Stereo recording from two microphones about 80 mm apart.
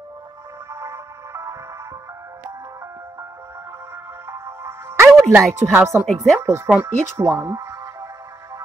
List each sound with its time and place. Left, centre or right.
0.7 s music: right
4.3 s music: right
5.7 s speech: right
6.7 s speech: right
7.2 s music: right